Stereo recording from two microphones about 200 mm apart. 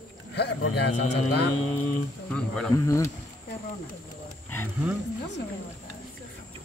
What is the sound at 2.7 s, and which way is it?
Speech, 15° left (ahead or behind).